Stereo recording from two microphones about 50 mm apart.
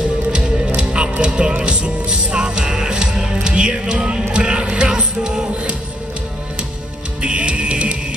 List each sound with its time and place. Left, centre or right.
0.7 s music: centre
7.2 s music: right